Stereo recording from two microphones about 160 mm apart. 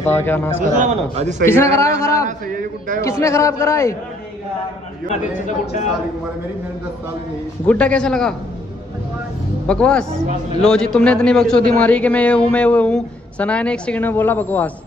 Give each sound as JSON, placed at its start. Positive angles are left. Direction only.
{"t": 0.0, "sound": "speech", "side_deg": 15}
{"t": 0.8, "sound": "a man's voice", "side_deg": -45}
{"t": 1.4, "sound": "speech", "side_deg": 15}
{"t": 2.2, "sound": "a man's voice", "side_deg": -55}
{"t": 3.0, "sound": "a man's voice", "side_deg": 20}
{"t": 5.1, "sound": "a man's voice", "side_deg": 45}
{"t": 7.6, "sound": "speech", "side_deg": 10}
{"t": 9.7, "sound": "a man's voice", "side_deg": 5}